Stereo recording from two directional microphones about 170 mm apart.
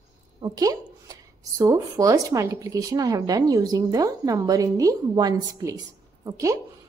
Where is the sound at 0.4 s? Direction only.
20° right (ahead or behind).